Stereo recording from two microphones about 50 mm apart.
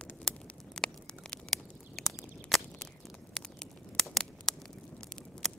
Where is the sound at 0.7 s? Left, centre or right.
Centre.